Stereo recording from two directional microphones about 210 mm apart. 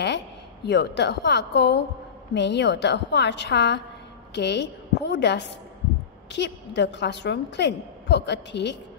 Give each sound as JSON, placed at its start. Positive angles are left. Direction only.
{"t": 0.7, "sound": "a woman's voice", "side_deg": 55}